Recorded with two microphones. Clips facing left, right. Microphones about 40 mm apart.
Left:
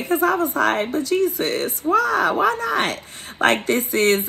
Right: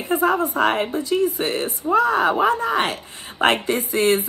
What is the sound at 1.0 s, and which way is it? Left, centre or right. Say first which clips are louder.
Speech: even; left.